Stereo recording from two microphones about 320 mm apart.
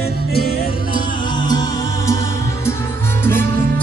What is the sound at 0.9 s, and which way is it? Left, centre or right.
Music, centre.